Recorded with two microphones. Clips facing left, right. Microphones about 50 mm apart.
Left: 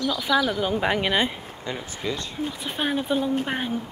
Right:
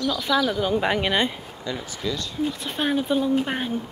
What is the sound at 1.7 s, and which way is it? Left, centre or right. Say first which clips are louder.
Speech: right 1 dB; left.